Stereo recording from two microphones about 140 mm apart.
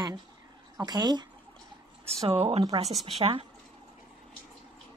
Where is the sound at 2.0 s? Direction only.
45° right (ahead or behind).